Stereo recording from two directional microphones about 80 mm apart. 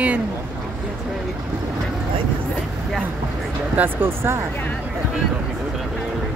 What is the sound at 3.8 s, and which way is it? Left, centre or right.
Speech, right.